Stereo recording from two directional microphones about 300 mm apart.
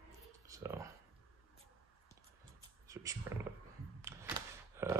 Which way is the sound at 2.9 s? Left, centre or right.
Centre.